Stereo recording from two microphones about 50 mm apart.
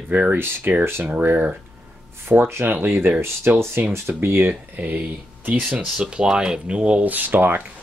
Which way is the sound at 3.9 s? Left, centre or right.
Right.